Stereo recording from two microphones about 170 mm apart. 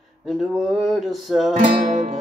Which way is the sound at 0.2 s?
Centre (ahead or behind).